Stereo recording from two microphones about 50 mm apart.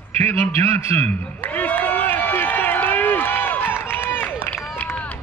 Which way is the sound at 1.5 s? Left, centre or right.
Left.